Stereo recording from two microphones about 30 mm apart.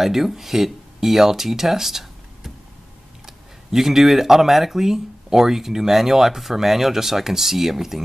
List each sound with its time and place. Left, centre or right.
0.0 s speech: centre